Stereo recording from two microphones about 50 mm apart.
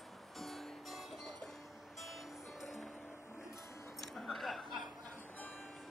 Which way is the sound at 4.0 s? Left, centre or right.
Centre.